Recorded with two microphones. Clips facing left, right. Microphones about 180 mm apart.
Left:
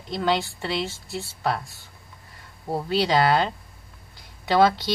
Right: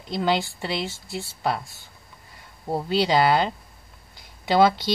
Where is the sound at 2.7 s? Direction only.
15° right (ahead or behind).